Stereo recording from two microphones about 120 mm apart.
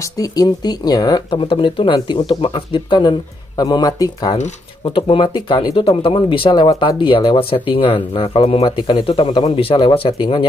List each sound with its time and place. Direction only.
0.0 s speech: 30° left (ahead or behind)
1.3 s speech: 45° left (ahead or behind)
4.8 s speech: 45° left (ahead or behind)